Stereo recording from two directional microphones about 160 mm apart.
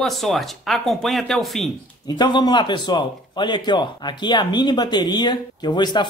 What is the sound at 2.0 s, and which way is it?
Speech, 30° left (ahead or behind).